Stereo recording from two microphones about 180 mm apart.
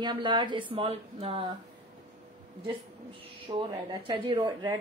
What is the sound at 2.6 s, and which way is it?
A woman's voice, 30° right (ahead or behind).